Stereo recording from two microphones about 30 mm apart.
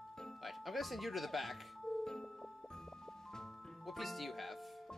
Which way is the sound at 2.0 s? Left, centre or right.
Centre.